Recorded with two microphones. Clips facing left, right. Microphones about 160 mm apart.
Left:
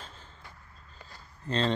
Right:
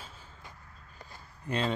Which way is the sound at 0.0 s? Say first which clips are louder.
Left 1 dB; 10° right (ahead or behind).